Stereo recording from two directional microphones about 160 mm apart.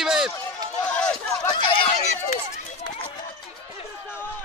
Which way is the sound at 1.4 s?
25° left (ahead or behind).